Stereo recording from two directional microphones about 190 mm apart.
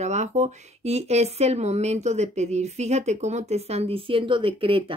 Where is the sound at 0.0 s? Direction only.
35° right (ahead or behind).